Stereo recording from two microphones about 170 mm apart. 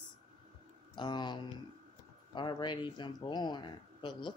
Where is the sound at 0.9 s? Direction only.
25° left (ahead or behind).